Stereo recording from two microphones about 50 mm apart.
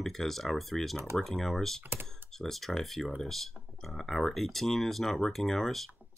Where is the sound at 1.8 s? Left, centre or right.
Right.